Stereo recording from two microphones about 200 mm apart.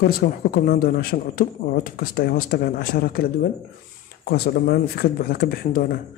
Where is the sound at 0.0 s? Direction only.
45° left (ahead or behind).